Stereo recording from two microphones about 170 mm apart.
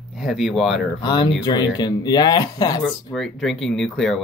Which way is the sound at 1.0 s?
25° left (ahead or behind).